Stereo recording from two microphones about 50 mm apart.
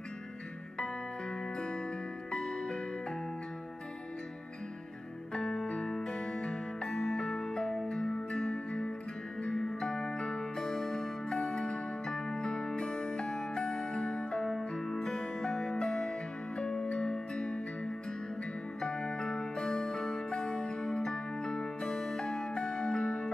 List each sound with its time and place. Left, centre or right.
2.3 s music: centre
5.3 s music: centre